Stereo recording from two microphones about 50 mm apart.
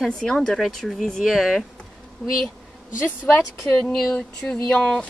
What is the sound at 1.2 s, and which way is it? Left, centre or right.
A woman's voice, centre.